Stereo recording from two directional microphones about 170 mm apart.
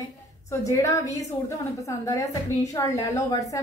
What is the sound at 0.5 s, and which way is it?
A woman's voice, 20° left (ahead or behind).